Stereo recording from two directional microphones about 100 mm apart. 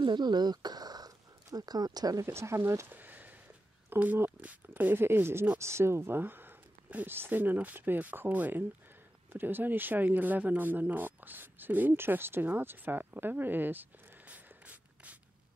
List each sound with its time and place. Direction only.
0.0 s speech: 50° right (ahead or behind)
2.2 s speech: 25° right (ahead or behind)